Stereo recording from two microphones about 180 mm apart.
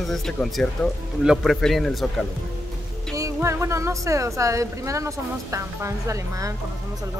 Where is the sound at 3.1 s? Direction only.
15° right (ahead or behind).